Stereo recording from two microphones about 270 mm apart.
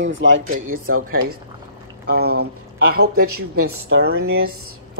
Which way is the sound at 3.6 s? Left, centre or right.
Right.